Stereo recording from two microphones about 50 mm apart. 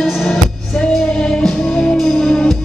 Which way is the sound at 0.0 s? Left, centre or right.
Centre.